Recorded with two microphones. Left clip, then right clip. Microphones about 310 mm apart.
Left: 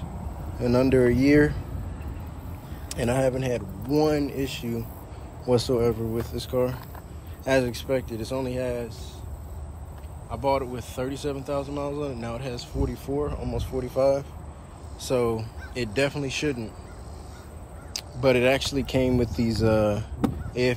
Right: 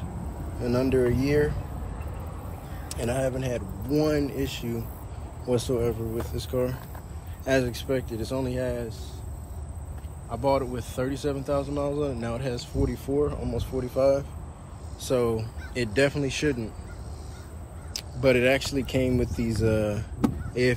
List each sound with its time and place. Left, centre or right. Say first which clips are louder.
0.6 s speech: left 3 dB; centre
2.9 s speech: left 4 dB; centre
10.3 s speech: even; centre
17.9 s speech: left 1 dB; centre